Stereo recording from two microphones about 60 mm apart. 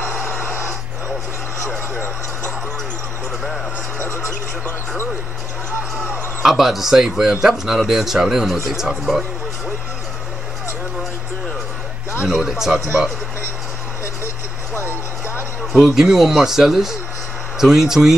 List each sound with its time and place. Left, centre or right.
6.4 s speech: centre
12.2 s speech: centre
14.8 s vehicle: left
15.8 s speech: centre